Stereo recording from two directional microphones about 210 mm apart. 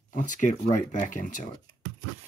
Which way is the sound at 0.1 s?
35° left (ahead or behind).